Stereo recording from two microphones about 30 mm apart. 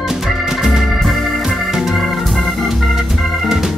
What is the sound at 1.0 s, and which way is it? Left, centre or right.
Music, centre.